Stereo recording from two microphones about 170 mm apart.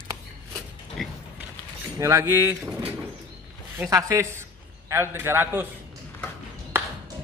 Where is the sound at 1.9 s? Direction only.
15° right (ahead or behind).